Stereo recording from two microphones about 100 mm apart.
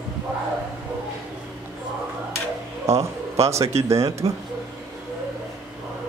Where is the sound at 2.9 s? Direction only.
30° right (ahead or behind).